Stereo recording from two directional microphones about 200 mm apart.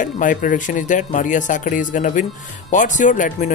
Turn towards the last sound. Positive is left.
turn(degrees=40)  # may be behind; listen again after turning